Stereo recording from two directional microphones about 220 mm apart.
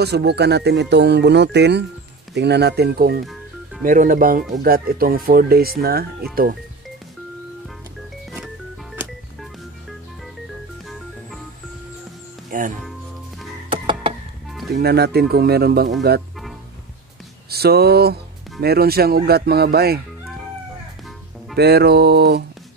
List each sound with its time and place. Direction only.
0.0 s speech: 50° right (ahead or behind)
12.4 s music: 35° right (ahead or behind)
13.7 s music: 25° right (ahead or behind)
14.7 s speech: 45° right (ahead or behind)
17.5 s speech: 45° right (ahead or behind)
21.5 s speech: 45° right (ahead or behind)